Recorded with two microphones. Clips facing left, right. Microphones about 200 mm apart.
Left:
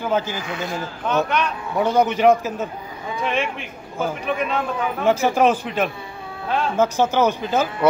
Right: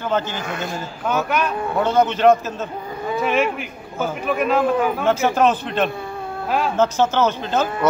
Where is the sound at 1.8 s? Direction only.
15° left (ahead or behind).